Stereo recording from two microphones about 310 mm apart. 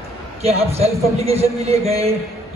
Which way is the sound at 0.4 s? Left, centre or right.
Centre.